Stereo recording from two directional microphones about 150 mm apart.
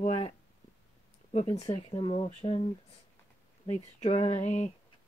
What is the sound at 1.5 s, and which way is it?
A woman's voice, 45° left (ahead or behind).